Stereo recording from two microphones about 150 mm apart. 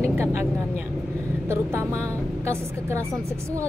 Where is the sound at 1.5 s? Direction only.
15° right (ahead or behind).